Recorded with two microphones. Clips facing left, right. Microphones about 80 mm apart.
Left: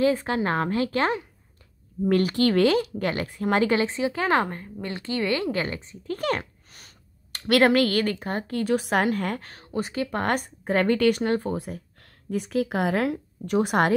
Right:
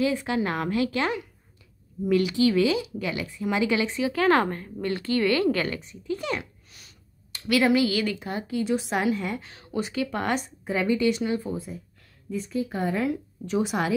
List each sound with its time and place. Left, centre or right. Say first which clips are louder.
0.0 s a woman's voice: left 2 dB; left
2.0 s speech: even; left
6.0 s speech: left 3 dB; left
7.3 s a woman's voice: left 2 dB; left
13.1 s speech: left 2 dB; left